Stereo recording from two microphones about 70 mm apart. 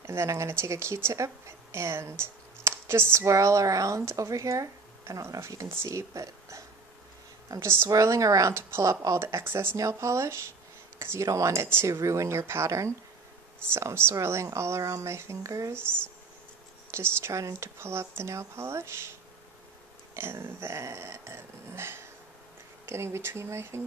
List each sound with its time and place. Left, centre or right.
0.0 s a woman's voice: right
7.6 s speech: right
7.9 s speech: right
9.8 s speech: right
16.9 s speech: right
20.2 s speech: right